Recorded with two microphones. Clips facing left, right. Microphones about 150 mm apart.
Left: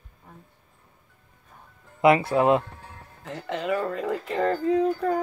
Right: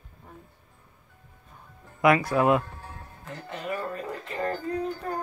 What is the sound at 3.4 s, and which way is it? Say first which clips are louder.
Music: left 6 dB; 90° left.